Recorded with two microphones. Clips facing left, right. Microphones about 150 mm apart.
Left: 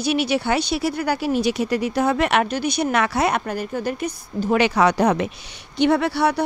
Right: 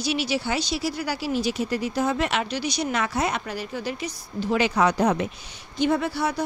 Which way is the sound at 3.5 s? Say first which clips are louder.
Left 5 dB; 50° left (ahead or behind).